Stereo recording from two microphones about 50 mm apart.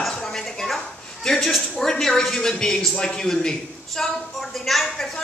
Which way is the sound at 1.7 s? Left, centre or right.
Centre.